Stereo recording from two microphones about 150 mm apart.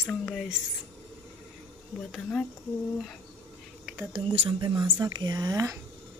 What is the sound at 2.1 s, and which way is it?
Speech, 5° left (ahead or behind).